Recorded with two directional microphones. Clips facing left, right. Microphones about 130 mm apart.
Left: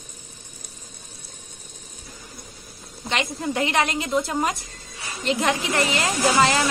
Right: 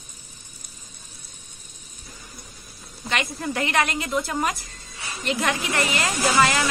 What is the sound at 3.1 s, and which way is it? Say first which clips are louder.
A woman's voice: left 1 dB; 20° left (ahead or behind).